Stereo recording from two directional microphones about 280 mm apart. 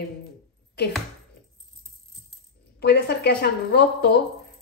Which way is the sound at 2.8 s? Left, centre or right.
Left.